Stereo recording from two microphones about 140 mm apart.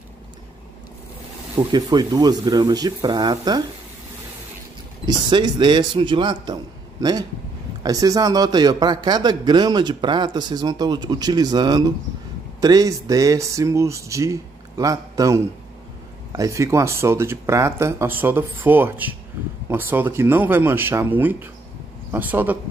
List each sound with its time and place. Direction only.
1.6 s a man's voice: 30° right (ahead or behind)
5.0 s a man's voice: 30° right (ahead or behind); by 22.6 s 10° right (ahead or behind)